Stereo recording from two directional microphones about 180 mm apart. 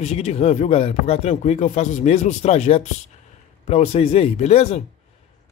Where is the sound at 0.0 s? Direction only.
35° left (ahead or behind).